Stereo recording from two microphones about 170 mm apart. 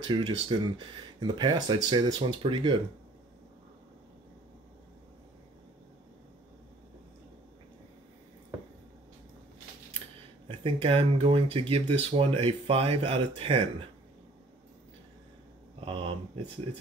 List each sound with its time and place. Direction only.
0.1 s speech: 30° right (ahead or behind)
10.6 s speech: 35° right (ahead or behind)
15.8 s speech: 30° right (ahead or behind)